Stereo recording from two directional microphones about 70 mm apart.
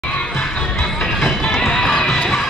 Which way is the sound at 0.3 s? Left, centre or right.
Centre.